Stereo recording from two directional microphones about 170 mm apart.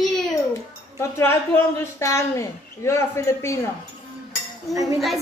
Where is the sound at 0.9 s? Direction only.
15° left (ahead or behind).